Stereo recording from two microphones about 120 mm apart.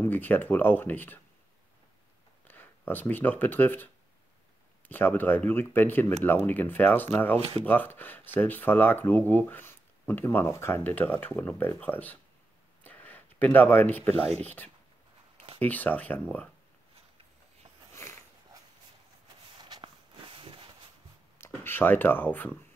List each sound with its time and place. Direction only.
0.0 s speech: 15° left (ahead or behind)
2.4 s speech: 15° left (ahead or behind)
7.3 s speech: 50° right (ahead or behind)
7.6 s speech: 15° left (ahead or behind)
12.8 s a sound: 15° left (ahead or behind)
14.4 s speech: 15° left (ahead or behind)
18.0 s a sound: 25° left (ahead or behind)
19.6 s walk: 35° right (ahead or behind)
20.3 s a sound: 45° right (ahead or behind)
21.4 s speech: 15° left (ahead or behind)